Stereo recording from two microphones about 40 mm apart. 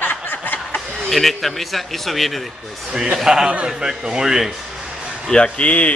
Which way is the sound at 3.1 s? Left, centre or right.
Centre.